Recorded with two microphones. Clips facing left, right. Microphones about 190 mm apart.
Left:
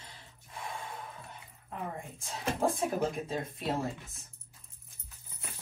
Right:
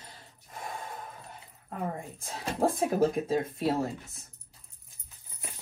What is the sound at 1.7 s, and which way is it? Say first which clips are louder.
Speech: right 4 dB; 55° right (ahead or behind).